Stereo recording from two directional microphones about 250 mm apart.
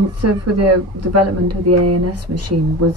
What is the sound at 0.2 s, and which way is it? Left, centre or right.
A woman's voice, right.